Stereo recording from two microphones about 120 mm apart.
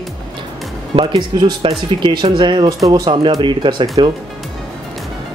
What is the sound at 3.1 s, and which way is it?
Speech, 40° right (ahead or behind).